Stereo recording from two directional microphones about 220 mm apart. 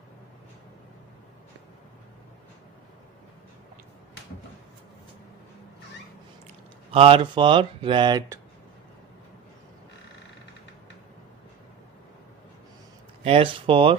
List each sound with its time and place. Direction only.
6.9 s speech: 25° right (ahead or behind)
13.2 s speech: 25° right (ahead or behind)